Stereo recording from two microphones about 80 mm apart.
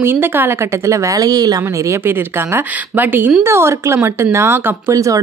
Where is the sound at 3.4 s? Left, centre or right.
Right.